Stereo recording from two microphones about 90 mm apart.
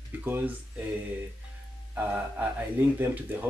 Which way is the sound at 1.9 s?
20° right (ahead or behind).